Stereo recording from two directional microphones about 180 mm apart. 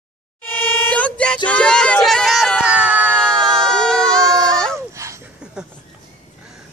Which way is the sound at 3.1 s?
5° left (ahead or behind).